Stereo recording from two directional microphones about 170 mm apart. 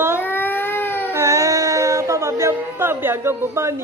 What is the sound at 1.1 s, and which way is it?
Music, 15° right (ahead or behind).